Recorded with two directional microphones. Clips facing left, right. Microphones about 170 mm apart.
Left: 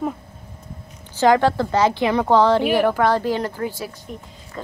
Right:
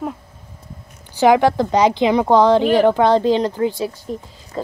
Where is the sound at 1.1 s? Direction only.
15° right (ahead or behind).